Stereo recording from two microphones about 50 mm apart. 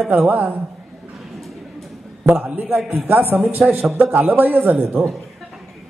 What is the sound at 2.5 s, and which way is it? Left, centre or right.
A man's voice, right.